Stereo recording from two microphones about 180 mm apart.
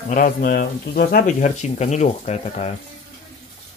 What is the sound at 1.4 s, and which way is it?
Speech, 40° left (ahead or behind).